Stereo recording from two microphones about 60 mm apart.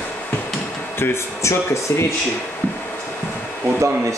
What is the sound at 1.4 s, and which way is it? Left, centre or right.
Speech, left.